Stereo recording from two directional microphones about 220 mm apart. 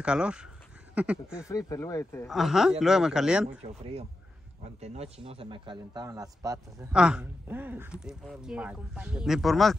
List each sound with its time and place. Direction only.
0.0 s speech: 5° right (ahead or behind)
1.5 s speech: 15° left (ahead or behind)
2.2 s speech: centre (ahead or behind)
3.4 s a man's voice: 30° right (ahead or behind)
6.9 s speech: 5° right (ahead or behind)